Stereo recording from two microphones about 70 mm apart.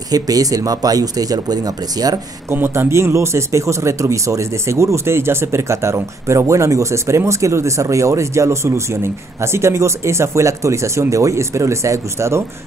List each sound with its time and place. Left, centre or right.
0.1 s speech: right
2.5 s speech: right